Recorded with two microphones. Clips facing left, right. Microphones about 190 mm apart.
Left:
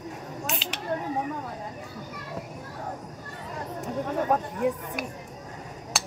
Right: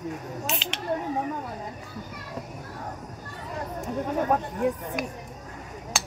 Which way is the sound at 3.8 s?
Centre (ahead or behind).